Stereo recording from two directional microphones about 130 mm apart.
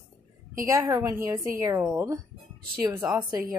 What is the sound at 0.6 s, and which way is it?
Speech, 20° right (ahead or behind).